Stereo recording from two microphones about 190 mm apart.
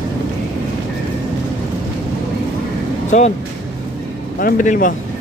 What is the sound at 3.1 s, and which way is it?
Speech, 40° left (ahead or behind).